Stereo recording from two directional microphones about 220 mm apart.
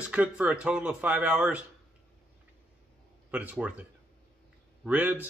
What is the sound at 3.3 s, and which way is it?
Speech, 5° right (ahead or behind).